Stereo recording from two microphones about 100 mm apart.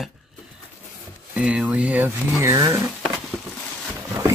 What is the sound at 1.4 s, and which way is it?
Speech, 10° right (ahead or behind).